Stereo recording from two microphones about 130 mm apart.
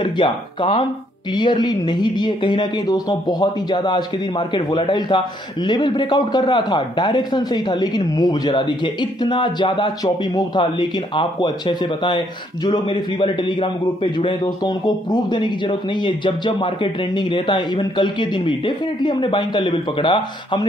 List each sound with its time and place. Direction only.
0.0 s speech: 40° left (ahead or behind)